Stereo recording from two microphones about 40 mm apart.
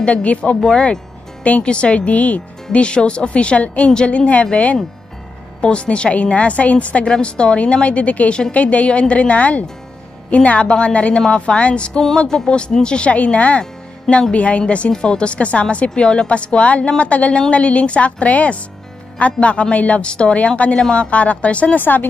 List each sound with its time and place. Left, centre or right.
0.0 s a woman's voice: left
0.6 s a woman's voice: centre; by 14.6 s left
14.9 s a woman's voice: left
20.3 s a woman's voice: left
21.7 s speech: left